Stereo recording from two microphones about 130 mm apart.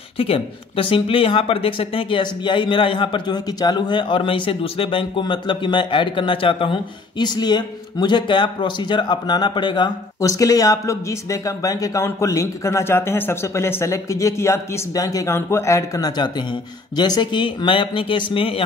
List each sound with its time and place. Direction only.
0.2 s speech: 45° left (ahead or behind)